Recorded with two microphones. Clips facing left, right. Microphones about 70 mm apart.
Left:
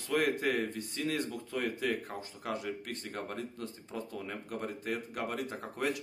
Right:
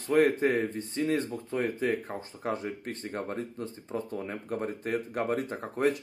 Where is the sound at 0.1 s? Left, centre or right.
Right.